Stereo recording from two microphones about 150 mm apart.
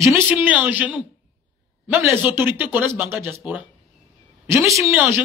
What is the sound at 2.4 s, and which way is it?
A man's voice, 15° right (ahead or behind).